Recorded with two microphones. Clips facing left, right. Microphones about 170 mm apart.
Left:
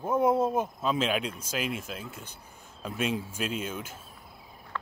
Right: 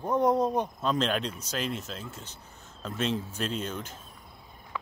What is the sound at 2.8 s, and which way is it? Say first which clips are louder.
Speech: even; 10° left (ahead or behind).